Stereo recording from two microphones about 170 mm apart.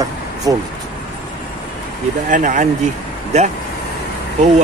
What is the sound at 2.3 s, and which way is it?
Speech, 50° right (ahead or behind).